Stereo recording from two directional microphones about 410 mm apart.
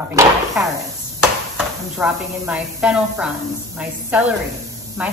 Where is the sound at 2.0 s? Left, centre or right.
Centre.